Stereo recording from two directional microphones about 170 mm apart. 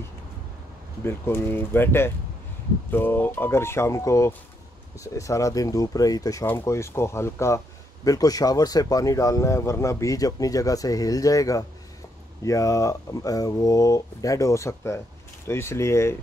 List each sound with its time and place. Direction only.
1.0 s speech: 15° left (ahead or behind)